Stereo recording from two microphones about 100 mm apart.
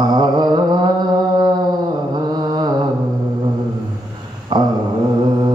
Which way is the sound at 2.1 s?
45° right (ahead or behind).